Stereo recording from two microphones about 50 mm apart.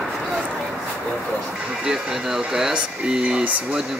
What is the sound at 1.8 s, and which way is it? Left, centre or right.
Speech, centre.